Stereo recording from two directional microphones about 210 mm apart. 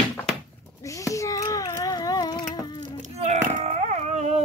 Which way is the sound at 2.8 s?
35° right (ahead or behind).